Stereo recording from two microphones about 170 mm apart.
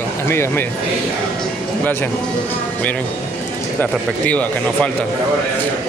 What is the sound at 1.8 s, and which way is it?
Speech, 10° left (ahead or behind).